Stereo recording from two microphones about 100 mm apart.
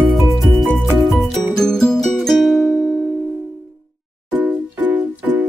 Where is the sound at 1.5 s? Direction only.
5° left (ahead or behind).